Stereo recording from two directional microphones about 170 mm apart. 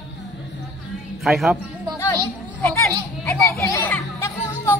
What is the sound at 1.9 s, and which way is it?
Music, 15° left (ahead or behind).